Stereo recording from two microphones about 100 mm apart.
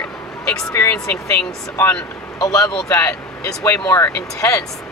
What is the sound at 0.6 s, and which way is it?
Speech, 25° left (ahead or behind).